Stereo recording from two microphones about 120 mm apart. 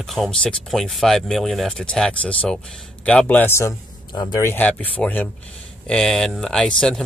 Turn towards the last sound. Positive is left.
turn(degrees=5)  # may be behind; listen again after turning